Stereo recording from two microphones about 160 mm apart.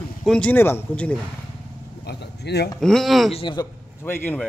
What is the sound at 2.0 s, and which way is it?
Speech, 90° left.